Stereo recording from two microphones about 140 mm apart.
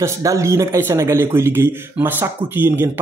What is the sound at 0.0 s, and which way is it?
A man's voice, 20° right (ahead or behind).